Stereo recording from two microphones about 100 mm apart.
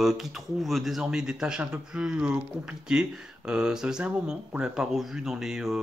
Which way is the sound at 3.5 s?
10° right (ahead or behind).